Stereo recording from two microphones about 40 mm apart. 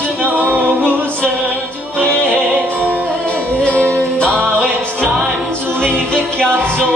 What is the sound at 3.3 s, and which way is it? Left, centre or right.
Music, left.